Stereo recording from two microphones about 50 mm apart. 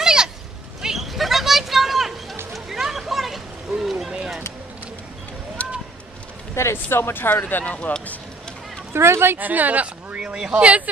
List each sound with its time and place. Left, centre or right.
0.0 s a sound: centre
5.6 s a sound: left
6.5 s speech: left
6.9 s speech: left
7.4 s speech: left
8.9 s speech: right
9.4 s speech: right